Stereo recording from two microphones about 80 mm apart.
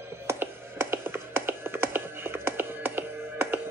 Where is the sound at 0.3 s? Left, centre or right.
Right.